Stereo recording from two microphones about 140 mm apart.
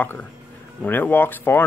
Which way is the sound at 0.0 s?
15° left (ahead or behind).